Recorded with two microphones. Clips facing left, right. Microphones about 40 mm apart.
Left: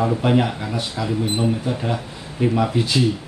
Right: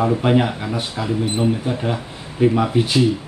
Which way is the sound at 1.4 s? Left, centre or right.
Centre.